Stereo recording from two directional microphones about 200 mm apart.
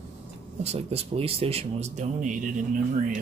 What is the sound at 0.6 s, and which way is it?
Speech, 30° right (ahead or behind).